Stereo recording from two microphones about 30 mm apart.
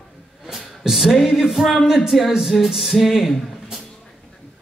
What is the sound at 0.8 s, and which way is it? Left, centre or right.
Mantra, centre.